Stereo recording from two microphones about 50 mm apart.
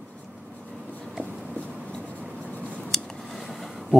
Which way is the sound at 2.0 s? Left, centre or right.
Right.